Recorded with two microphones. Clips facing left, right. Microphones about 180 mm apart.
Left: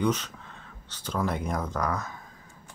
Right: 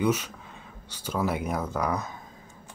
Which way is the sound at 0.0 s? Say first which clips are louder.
Right 1 dB; 10° right (ahead or behind).